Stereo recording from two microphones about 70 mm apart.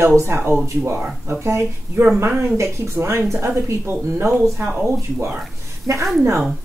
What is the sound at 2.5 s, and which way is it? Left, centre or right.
Speech, right.